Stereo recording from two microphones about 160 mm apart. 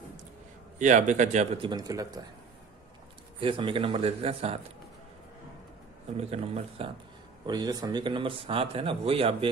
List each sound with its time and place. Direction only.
0.7 s speech: 50° right (ahead or behind)
1.6 s speech: 25° right (ahead or behind)
3.3 s speech: 35° right (ahead or behind)
6.1 s speech: 40° right (ahead or behind)
7.4 s speech: 25° right (ahead or behind)